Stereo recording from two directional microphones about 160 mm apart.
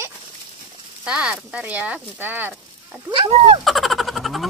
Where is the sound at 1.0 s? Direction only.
5° right (ahead or behind).